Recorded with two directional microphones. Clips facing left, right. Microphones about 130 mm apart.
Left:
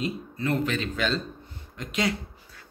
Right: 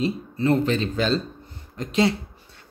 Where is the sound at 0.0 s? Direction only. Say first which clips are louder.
Right 6 dB; 30° right (ahead or behind).